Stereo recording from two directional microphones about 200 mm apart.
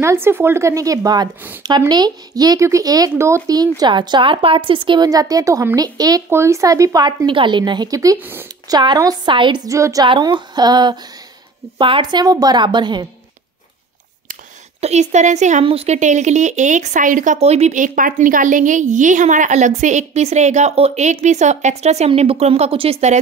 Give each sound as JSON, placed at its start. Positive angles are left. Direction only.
{"t": 0.0, "sound": "speech", "side_deg": -10}
{"t": 14.8, "sound": "speech", "side_deg": -35}